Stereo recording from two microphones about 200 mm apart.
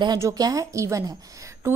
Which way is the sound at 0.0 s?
20° right (ahead or behind).